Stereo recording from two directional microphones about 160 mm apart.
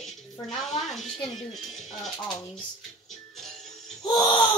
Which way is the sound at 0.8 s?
Centre (ahead or behind).